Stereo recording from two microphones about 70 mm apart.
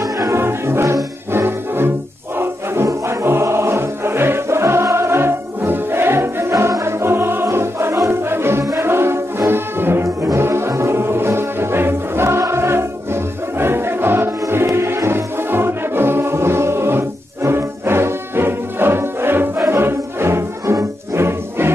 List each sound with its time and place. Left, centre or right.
0.0 s music: right
0.4 s music: right
1.3 s brass instrument: right
2.3 s music: right
8.8 s brass instrument: right
10.2 s music: right